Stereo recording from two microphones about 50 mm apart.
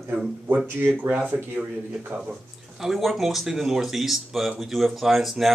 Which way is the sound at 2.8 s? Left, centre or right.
Centre.